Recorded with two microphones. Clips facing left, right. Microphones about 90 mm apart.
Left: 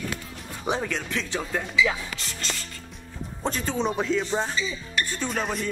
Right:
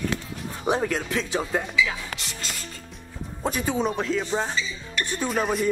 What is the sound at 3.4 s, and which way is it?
Speech, 10° right (ahead or behind).